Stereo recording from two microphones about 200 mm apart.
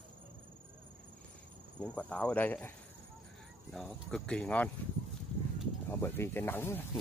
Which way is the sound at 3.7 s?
5° left (ahead or behind).